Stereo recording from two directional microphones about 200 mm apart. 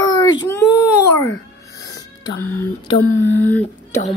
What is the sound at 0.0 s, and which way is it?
Whimper, 15° left (ahead or behind).